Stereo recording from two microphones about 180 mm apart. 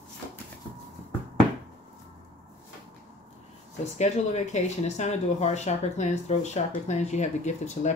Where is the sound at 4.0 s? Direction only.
40° left (ahead or behind).